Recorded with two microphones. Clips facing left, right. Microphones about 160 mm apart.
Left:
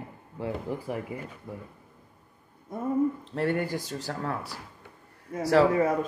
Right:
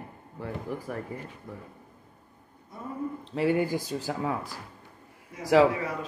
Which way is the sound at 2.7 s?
50° left (ahead or behind).